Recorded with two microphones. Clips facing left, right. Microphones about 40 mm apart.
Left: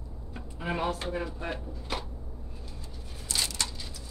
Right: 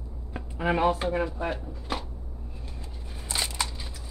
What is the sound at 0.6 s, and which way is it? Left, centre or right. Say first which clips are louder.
Speech: right 7 dB; right.